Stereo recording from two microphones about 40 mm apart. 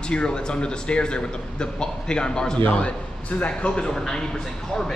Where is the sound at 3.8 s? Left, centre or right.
Centre.